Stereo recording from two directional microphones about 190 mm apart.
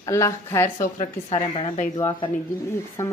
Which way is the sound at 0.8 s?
40° left (ahead or behind).